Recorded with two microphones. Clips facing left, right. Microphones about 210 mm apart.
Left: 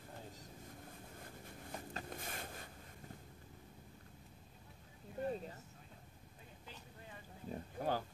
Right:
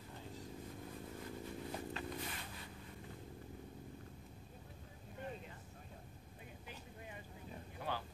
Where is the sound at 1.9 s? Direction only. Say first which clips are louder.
Right 2 dB; 45° left (ahead or behind).